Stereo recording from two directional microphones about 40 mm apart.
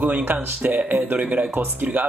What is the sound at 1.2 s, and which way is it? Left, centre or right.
Speech, right.